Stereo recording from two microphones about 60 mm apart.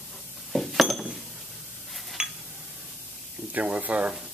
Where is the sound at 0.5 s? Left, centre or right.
Centre.